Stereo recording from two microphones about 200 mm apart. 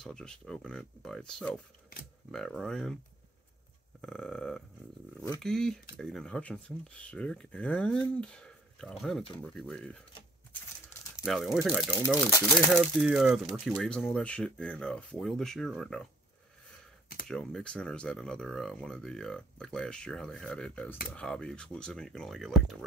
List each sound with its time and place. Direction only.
0.0 s speech: 5° left (ahead or behind)
4.0 s speech: centre (ahead or behind)
11.2 s speech: centre (ahead or behind)
12.3 s speech: 10° left (ahead or behind)
12.8 s speech: 5° right (ahead or behind)
17.3 s speech: 5° left (ahead or behind)